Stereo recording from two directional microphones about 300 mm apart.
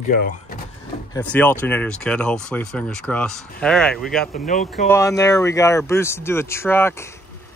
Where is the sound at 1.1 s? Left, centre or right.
Centre.